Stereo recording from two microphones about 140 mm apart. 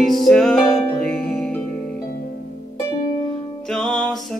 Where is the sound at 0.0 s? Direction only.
Centre (ahead or behind).